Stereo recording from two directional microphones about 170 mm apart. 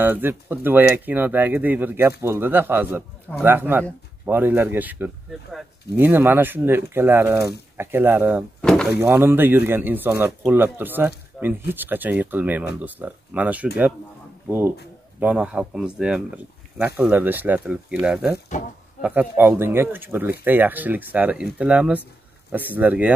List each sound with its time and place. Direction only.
0.0 s speech: 10° right (ahead or behind)
8.5 s door: 5° left (ahead or behind)
9.0 s speech: 15° right (ahead or behind)
15.1 s speech: 10° right (ahead or behind)
18.5 s speech: 45° left (ahead or behind)
18.9 s speech: 10° right (ahead or behind)